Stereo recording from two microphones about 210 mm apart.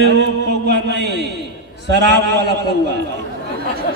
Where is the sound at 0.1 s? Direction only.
55° right (ahead or behind).